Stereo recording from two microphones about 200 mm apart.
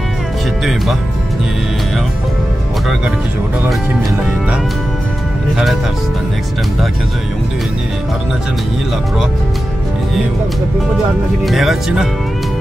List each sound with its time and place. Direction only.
11.4 s speech: centre (ahead or behind)